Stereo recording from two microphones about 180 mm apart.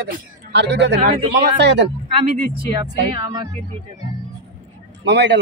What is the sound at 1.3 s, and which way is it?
Speech, 70° right (ahead or behind).